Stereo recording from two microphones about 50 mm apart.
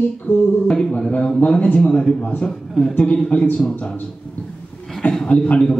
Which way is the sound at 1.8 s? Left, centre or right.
Centre.